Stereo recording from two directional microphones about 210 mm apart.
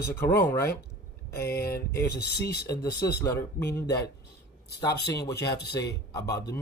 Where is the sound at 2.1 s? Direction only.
50° left (ahead or behind).